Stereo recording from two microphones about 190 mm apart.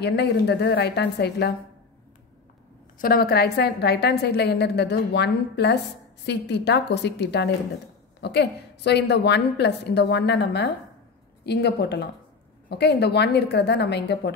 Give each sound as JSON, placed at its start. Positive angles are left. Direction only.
{"t": 0.0, "sound": "a woman's voice", "side_deg": 60}
{"t": 3.0, "sound": "a woman's voice", "side_deg": 55}